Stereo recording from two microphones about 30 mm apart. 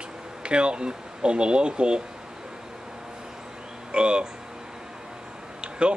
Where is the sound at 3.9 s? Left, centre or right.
Right.